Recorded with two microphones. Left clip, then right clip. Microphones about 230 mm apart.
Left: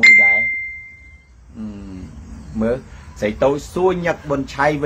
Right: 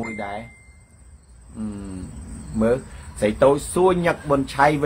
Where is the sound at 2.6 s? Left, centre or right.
Centre.